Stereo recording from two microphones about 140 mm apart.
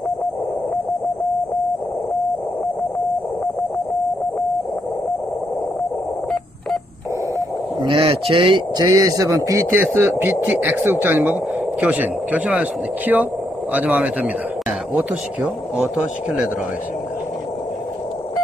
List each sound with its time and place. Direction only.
7.8 s speech: 35° right (ahead or behind); by 14.3 s 10° right (ahead or behind)
15.8 s speech: centre (ahead or behind)